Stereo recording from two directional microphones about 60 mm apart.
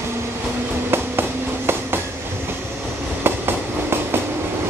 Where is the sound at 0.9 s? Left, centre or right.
Right.